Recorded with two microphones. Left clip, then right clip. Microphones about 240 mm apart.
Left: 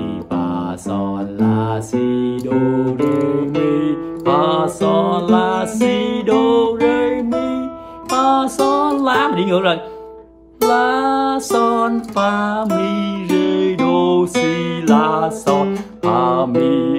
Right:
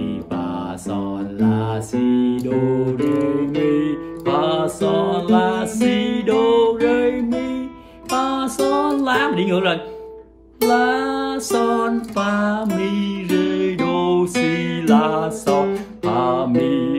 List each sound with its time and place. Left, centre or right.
0.0 s music: centre
2.0 s music: left
2.3 s music: centre